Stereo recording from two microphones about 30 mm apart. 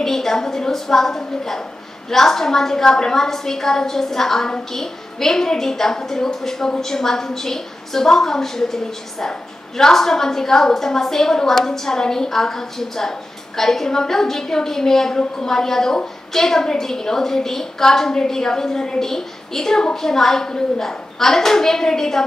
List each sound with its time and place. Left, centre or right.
0.0 s a woman's voice: centre